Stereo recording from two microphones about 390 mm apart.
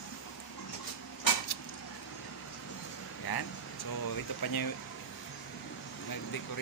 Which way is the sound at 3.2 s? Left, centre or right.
Left.